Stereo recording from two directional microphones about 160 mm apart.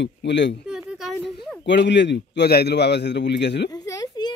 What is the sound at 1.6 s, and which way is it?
A man's voice, 90° left.